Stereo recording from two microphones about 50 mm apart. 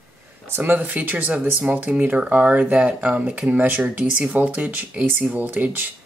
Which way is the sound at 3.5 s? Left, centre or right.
Right.